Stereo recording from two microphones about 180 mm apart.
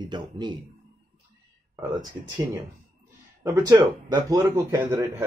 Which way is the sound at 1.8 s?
20° right (ahead or behind).